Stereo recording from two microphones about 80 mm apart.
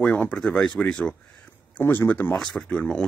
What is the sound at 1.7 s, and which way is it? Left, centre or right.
Speech, left.